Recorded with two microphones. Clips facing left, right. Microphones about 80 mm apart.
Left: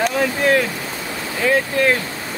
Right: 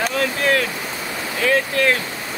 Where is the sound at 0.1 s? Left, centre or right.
Centre.